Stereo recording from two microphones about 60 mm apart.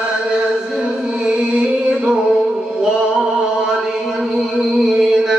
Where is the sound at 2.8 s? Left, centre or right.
Centre.